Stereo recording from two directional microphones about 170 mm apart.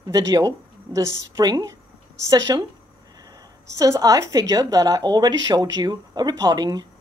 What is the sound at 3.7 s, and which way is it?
Speech, 20° right (ahead or behind).